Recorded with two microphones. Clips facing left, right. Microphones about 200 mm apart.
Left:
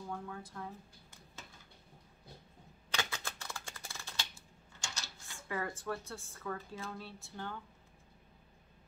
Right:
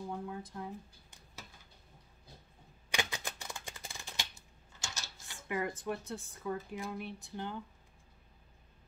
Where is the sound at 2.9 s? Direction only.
15° right (ahead or behind).